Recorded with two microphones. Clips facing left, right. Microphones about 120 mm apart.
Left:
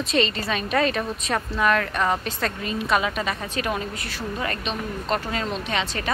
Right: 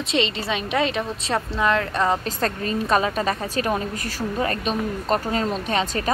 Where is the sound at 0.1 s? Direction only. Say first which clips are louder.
Right 1 dB; 20° right (ahead or behind).